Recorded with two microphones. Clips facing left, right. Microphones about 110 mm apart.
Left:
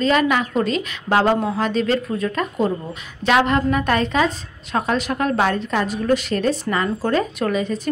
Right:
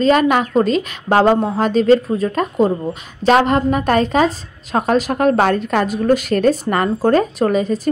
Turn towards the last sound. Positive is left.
turn(degrees=-40)  # may be behind; listen again after turning